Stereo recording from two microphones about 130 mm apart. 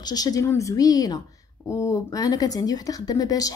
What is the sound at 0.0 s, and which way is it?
A woman's voice, 30° left (ahead or behind).